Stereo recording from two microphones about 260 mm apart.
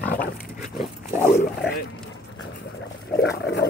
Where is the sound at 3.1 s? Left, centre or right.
Left.